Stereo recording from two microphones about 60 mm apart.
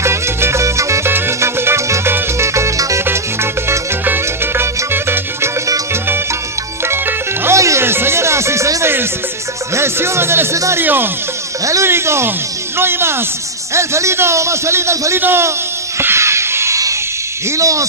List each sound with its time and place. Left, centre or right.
0.0 s music: right
4.0 s music: right
6.9 s music: right
7.5 s music: right
7.8 s music: right
10.8 s speech: right
11.8 s a man's voice: right
13.7 s a man's voice: right
15.1 s speech: right
16.0 s a sound: right
17.6 s speech: right